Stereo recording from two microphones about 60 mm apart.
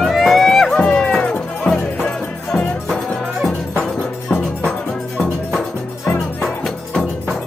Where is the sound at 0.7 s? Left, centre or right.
Centre.